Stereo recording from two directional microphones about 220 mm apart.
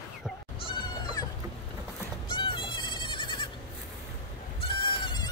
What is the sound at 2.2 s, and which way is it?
Goat, 20° left (ahead or behind).